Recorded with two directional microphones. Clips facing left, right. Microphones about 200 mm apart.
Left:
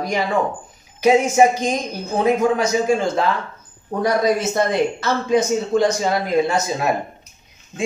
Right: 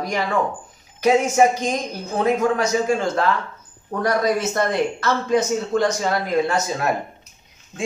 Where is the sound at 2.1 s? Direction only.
15° left (ahead or behind).